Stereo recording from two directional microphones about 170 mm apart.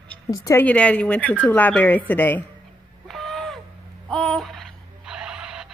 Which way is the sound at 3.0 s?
Centre (ahead or behind).